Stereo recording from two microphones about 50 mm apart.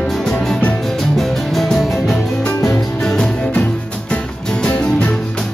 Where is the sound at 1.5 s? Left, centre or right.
Centre.